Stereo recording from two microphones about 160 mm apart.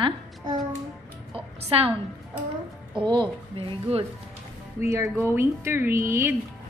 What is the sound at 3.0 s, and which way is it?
Speech, 30° right (ahead or behind).